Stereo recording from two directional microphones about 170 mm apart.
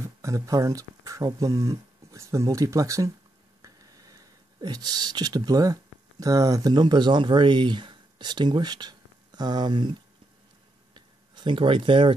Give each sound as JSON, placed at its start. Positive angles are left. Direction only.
{"t": 0.0, "sound": "speech", "side_deg": -20}
{"t": 11.3, "sound": "speech", "side_deg": -30}